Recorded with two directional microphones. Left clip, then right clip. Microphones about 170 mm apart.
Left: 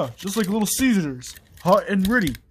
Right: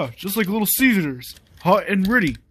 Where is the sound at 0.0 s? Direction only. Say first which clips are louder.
Right 1 dB; 10° right (ahead or behind).